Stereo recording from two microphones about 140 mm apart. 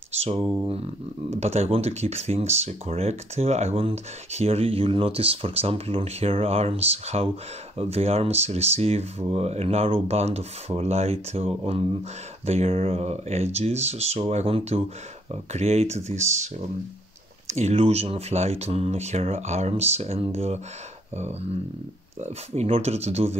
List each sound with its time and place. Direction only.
1.3 s speech: 50° right (ahead or behind)